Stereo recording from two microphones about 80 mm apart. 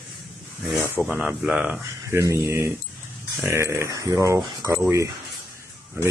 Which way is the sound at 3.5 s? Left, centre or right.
Right.